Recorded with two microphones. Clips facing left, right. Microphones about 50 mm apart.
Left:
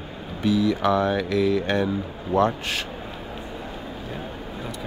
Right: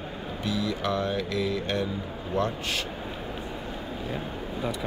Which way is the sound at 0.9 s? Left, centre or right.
Left.